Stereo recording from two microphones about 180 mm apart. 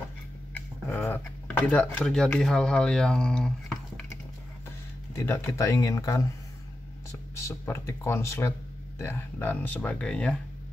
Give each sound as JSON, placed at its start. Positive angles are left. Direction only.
{"t": 0.6, "sound": "a sound", "side_deg": 10}
{"t": 1.7, "sound": "speech", "side_deg": 5}
{"t": 5.1, "sound": "speech", "side_deg": 15}